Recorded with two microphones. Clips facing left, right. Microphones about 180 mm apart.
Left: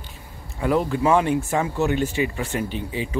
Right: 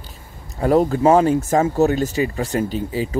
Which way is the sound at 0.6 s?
40° right (ahead or behind).